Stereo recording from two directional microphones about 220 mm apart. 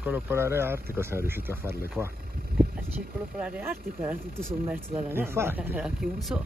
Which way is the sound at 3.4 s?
5° right (ahead or behind).